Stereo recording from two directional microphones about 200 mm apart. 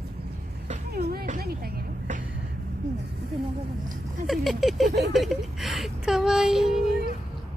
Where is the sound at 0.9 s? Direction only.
50° right (ahead or behind).